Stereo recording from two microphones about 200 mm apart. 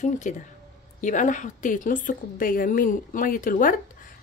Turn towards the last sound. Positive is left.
turn(degrees=45)  # may be behind; listen again after turning